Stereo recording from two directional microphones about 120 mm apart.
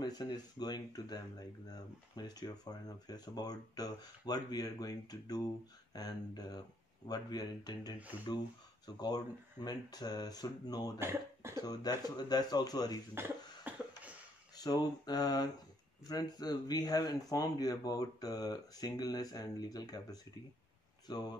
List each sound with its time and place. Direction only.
0.0 s speech: 35° left (ahead or behind)
11.0 s speech: 20° right (ahead or behind)
11.6 s speech: 35° left (ahead or behind)
13.1 s cough: 15° right (ahead or behind)
14.5 s speech: 35° left (ahead or behind)